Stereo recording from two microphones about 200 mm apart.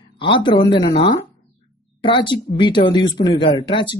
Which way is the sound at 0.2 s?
25° left (ahead or behind).